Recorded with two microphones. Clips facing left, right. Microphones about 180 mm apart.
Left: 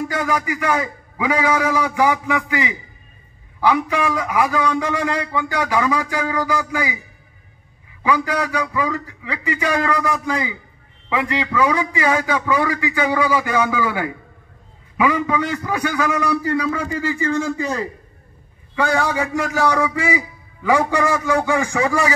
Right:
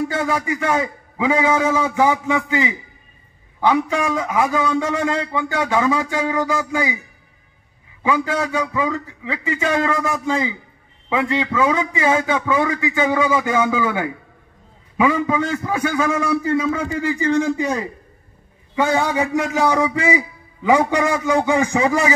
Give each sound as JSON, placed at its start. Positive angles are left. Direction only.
{"t": 0.1, "sound": "a man's voice", "side_deg": -25}
{"t": 8.0, "sound": "a man's voice", "side_deg": -25}